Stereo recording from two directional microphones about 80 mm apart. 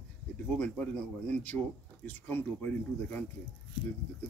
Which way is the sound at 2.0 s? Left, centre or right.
Left.